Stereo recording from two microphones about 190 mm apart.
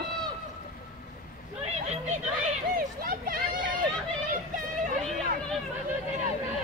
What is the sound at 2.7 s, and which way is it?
Speech, 50° right (ahead or behind).